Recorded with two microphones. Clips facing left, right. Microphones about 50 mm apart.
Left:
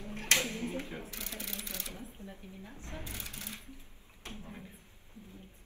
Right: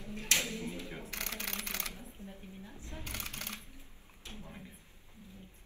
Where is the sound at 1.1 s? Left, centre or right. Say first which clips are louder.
Right 3 dB; right.